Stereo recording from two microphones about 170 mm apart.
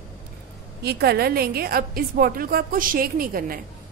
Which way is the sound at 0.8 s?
75° right (ahead or behind).